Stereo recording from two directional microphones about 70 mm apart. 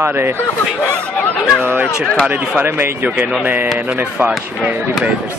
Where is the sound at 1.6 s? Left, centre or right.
Right.